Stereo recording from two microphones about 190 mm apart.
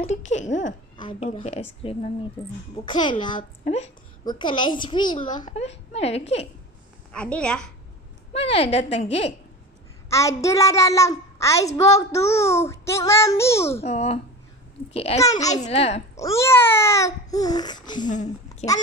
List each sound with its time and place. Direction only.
0.0 s a woman's voice: 40° left (ahead or behind)
0.9 s a woman's voice: 30° left (ahead or behind)
3.6 s a woman's voice: 35° left (ahead or behind)
4.2 s a child's voice: 25° left (ahead or behind)
5.5 s a woman's voice: 35° left (ahead or behind)
7.1 s a woman's voice: 5° left (ahead or behind)
8.3 s a woman's voice: 30° left (ahead or behind)
10.0 s a child's voice: 15° left (ahead or behind)
13.8 s a woman's voice: 35° left (ahead or behind)
16.2 s a child's voice: 15° left (ahead or behind)
18.0 s a woman's voice: 40° left (ahead or behind)